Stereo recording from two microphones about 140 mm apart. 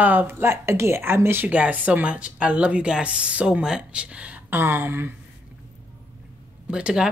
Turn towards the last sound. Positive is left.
turn(degrees=-5)  # may be behind; listen again after turning